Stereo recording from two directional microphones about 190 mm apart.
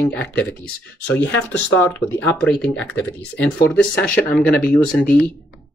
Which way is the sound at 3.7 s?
5° left (ahead or behind).